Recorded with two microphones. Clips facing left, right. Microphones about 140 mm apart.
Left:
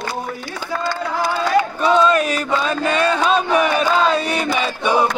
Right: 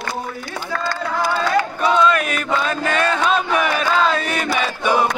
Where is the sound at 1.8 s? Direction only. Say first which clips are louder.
Left 1 dB; 35° left (ahead or behind).